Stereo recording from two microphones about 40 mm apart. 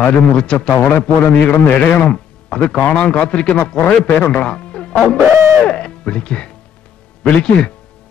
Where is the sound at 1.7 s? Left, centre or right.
Left.